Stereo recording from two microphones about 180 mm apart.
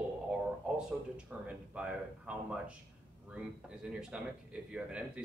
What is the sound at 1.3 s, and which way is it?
Speech, 5° right (ahead or behind).